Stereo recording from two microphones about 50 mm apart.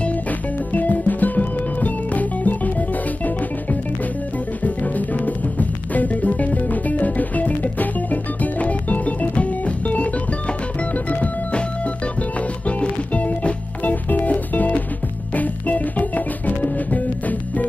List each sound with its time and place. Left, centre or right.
0.7 s music: left
4.6 s music: left
11.1 s music: left
12.6 s music: left